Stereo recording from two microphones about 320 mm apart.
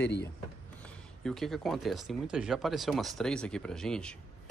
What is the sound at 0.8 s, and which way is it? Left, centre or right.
Speech, centre.